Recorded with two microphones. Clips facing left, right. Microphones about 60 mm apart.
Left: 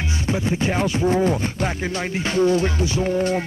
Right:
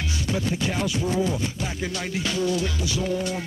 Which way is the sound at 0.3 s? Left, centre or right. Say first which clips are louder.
Left 5 dB; left.